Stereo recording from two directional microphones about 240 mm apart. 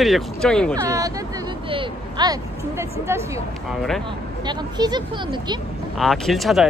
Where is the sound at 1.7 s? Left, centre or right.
Centre.